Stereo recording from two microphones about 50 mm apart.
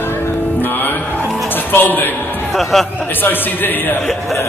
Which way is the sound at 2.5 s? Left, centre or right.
Centre.